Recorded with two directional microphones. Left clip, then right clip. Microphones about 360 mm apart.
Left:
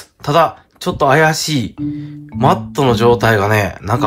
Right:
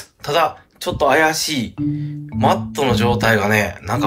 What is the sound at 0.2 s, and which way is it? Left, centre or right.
Speech, centre.